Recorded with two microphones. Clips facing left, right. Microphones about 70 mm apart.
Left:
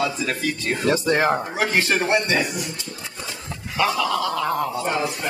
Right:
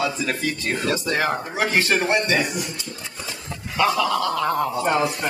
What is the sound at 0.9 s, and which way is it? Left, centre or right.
Speech, left.